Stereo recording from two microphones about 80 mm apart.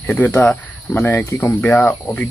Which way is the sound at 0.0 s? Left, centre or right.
Left.